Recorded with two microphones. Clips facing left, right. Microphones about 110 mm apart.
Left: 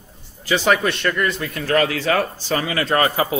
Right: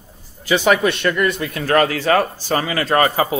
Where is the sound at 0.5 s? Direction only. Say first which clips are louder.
Right 2 dB; 15° right (ahead or behind).